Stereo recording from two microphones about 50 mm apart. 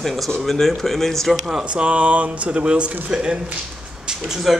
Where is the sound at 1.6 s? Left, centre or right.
Right.